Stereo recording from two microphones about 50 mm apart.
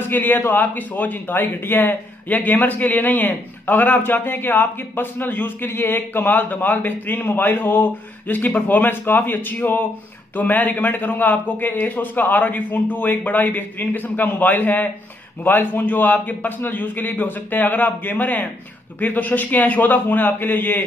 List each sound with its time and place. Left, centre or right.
0.0 s speech: left